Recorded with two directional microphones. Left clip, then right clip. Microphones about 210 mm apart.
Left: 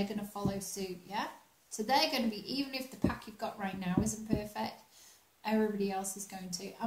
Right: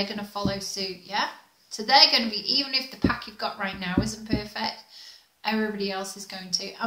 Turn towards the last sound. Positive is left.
turn(degrees=10)  # may be behind; listen again after turning